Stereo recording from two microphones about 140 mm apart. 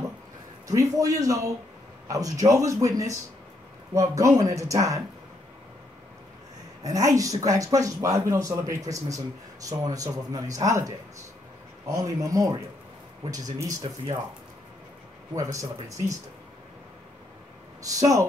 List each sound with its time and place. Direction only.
0.7 s speech: 25° right (ahead or behind)
6.8 s speech: 25° right (ahead or behind)
11.9 s speech: 25° right (ahead or behind)
15.3 s speech: 25° right (ahead or behind)
17.8 s speech: 25° right (ahead or behind)